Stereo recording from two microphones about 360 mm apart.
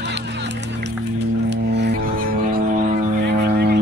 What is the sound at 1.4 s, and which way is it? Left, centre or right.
Music, right.